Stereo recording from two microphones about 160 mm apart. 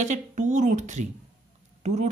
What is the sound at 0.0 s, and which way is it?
Speech, 50° right (ahead or behind).